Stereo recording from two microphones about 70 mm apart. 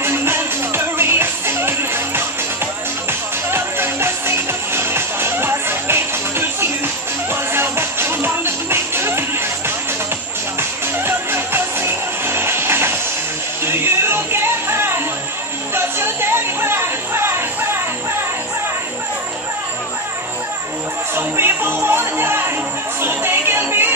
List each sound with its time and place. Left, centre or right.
0.0 s music: right
11.1 s music: right
15.7 s a sound: right
21.1 s music: right